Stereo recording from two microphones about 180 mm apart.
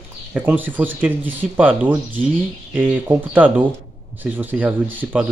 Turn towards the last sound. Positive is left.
turn(degrees=-10)  # may be behind; listen again after turning